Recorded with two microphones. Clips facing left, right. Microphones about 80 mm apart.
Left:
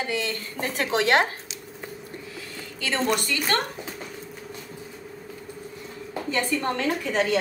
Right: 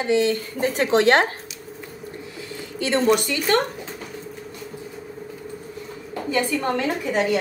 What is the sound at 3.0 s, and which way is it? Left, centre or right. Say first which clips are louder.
Speech: right 6 dB; centre.